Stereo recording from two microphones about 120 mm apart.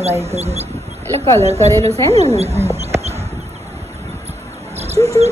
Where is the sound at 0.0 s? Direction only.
60° right (ahead or behind).